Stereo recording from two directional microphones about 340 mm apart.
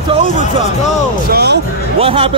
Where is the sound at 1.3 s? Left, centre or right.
Right.